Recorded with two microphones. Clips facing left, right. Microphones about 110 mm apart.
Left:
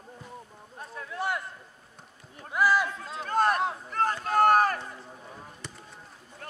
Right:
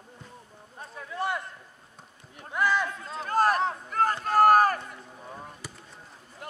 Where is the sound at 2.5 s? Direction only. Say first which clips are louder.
Left 2 dB; 5° left (ahead or behind).